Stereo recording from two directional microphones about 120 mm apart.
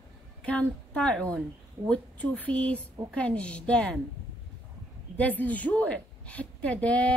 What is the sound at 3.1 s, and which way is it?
Speech, 10° left (ahead or behind).